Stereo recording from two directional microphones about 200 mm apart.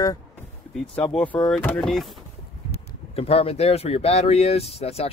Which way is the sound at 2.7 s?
30° left (ahead or behind).